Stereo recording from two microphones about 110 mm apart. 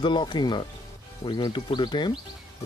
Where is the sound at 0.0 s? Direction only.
45° left (ahead or behind).